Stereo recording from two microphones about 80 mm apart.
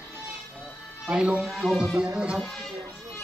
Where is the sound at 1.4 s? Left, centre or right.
Centre.